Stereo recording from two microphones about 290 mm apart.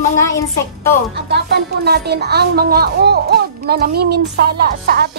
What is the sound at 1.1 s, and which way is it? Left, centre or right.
Speech, right.